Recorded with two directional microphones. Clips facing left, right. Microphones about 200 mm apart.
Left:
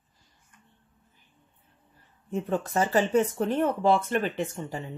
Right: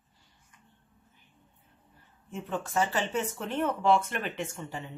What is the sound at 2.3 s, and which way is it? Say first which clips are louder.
Speech: left 4 dB; 40° left (ahead or behind).